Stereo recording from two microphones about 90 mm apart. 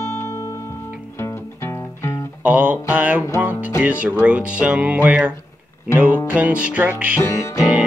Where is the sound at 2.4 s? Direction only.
20° right (ahead or behind).